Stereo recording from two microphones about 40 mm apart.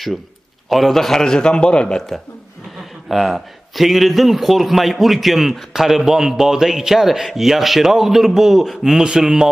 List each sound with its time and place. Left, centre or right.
0.7 s a man's voice: centre; by 2.0 s left
3.1 s a man's voice: centre